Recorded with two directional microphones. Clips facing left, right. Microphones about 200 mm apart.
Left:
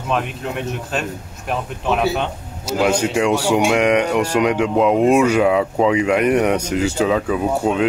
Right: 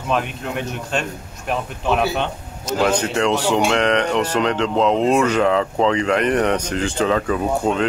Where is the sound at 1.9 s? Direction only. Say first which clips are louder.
Left 1 dB; centre (ahead or behind).